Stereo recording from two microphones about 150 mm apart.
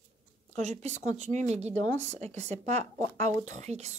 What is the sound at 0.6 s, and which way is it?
Speech, 50° right (ahead or behind).